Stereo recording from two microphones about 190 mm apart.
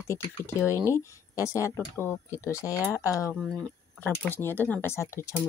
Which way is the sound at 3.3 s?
5° left (ahead or behind).